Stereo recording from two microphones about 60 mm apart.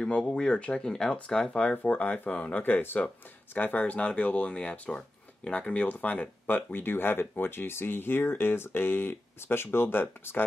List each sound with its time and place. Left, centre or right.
0.0 s speech: centre; by 10.4 s left